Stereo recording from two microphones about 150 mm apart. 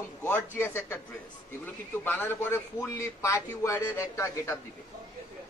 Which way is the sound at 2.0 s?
15° left (ahead or behind).